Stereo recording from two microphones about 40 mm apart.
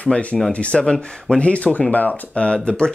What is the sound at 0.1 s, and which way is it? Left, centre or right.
Speech, left.